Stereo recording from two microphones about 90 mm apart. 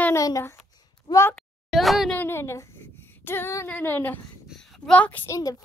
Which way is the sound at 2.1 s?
25° left (ahead or behind).